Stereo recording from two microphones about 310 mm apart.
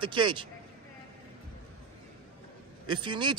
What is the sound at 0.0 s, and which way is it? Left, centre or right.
Speech, centre.